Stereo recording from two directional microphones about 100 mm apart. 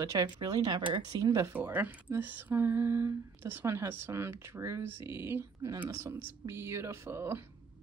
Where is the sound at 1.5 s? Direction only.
20° right (ahead or behind).